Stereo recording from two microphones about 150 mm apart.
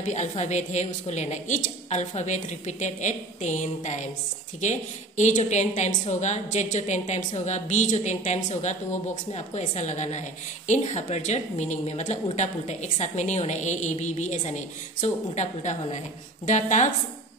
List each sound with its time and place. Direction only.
0.0 s a woman's voice: 50° left (ahead or behind)